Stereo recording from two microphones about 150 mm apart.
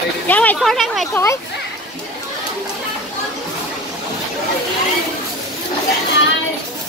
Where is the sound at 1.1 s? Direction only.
20° left (ahead or behind).